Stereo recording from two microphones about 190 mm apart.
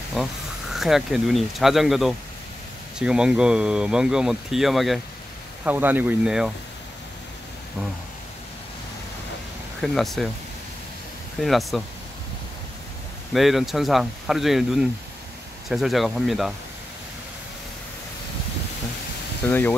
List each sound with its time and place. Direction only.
0.2 s speech: centre (ahead or behind)
9.8 s speech: centre (ahead or behind)
11.4 s speech: centre (ahead or behind)
13.3 s speech: centre (ahead or behind)
19.4 s speech: 10° left (ahead or behind)